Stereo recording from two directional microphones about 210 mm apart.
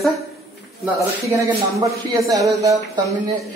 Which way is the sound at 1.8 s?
15° right (ahead or behind).